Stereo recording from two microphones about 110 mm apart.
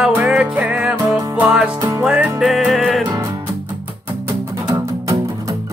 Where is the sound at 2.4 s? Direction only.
Centre (ahead or behind).